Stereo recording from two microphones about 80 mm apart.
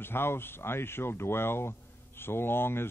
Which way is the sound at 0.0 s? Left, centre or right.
Left.